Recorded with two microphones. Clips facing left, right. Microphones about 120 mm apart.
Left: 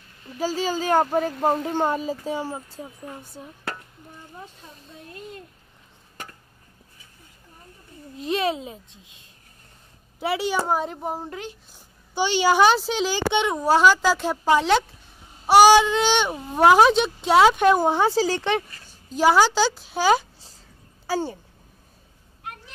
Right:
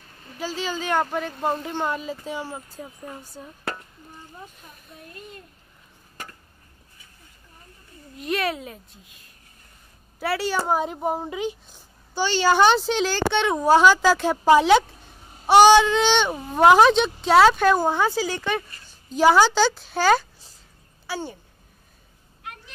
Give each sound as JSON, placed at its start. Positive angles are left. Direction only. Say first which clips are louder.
{"t": 0.4, "sound": "speech", "louder": "left 4 dB", "side_deg": 40}
{"t": 2.5, "sound": "speech", "louder": "left 1 dB", "side_deg": 30}
{"t": 3.4, "sound": "a child's voice", "louder": "even", "side_deg": 15}
{"t": 4.7, "sound": "speech", "louder": "left 2 dB", "side_deg": 25}
{"t": 8.2, "sound": "a child's voice", "louder": "left 2 dB", "side_deg": 25}
{"t": 10.7, "sound": "a woman's voice", "louder": "right 2 dB", "side_deg": -5}
{"t": 12.1, "sound": "a child's voice", "louder": "even", "side_deg": 15}
{"t": 15.4, "sound": "a child's voice", "louder": "even", "side_deg": 5}
{"t": 19.1, "sound": "a woman's voice", "louder": "right 1 dB", "side_deg": 5}
{"t": 21.1, "sound": "speech", "louder": "left 5 dB", "side_deg": 35}